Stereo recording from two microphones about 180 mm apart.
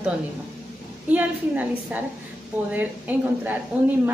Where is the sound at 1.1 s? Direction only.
10° right (ahead or behind).